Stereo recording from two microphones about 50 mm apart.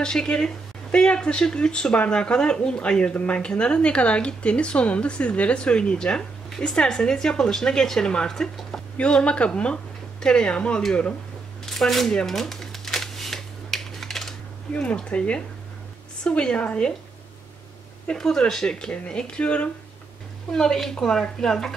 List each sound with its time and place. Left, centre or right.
0.0 s a woman's voice: centre
8.9 s a woman's voice: left
11.6 s shuffling cards: centre
12.1 s a woman's voice: centre
12.4 s typewriter: centre
14.7 s speech: left
18.1 s a woman's voice: centre
20.5 s a woman's voice: centre